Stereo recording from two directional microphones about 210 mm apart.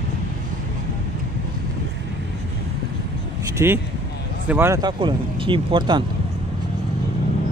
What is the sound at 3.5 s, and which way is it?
Speech, 10° right (ahead or behind).